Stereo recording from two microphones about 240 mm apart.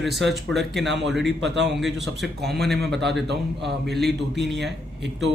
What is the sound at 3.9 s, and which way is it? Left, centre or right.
Speech, centre.